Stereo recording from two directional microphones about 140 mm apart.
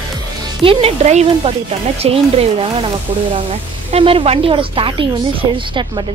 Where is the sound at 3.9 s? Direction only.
40° right (ahead or behind).